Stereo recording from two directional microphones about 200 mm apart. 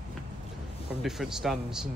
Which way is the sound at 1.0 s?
Centre (ahead or behind).